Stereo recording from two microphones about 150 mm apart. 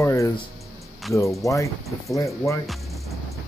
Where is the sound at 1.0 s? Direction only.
Centre (ahead or behind).